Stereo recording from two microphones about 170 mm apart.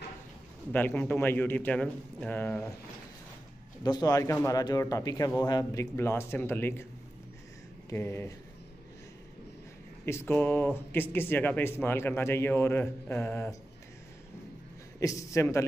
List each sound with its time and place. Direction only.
0.7 s a man's voice: 10° left (ahead or behind)
3.8 s a man's voice: 20° left (ahead or behind)
7.9 s a man's voice: 15° left (ahead or behind)
10.0 s a man's voice: 15° left (ahead or behind)
15.0 s a man's voice: 20° left (ahead or behind)